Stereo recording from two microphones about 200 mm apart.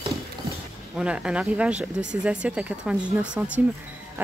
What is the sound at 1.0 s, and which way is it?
A woman's voice, 5° right (ahead or behind).